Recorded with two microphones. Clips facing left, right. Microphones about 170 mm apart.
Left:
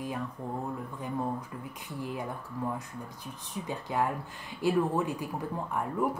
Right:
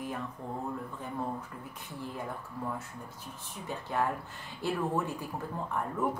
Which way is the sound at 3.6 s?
15° left (ahead or behind).